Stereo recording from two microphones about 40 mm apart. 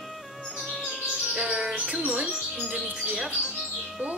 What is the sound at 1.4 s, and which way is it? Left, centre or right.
Music, centre.